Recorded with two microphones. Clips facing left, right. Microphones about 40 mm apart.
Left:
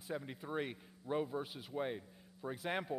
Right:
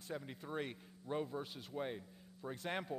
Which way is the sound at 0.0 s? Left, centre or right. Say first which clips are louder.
Left 3 dB; centre.